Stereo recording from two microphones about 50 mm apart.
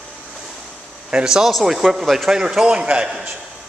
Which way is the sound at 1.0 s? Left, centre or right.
Centre.